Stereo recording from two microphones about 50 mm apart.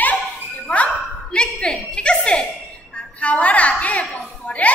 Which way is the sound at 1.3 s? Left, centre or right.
Centre.